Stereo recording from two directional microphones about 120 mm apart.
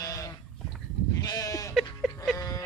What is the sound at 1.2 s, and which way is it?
Sheep, 30° left (ahead or behind).